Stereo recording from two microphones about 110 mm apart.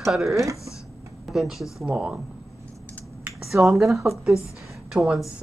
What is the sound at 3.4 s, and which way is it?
Speech, centre (ahead or behind).